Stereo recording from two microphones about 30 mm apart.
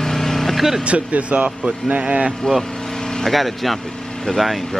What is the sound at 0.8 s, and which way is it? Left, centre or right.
Speech, right.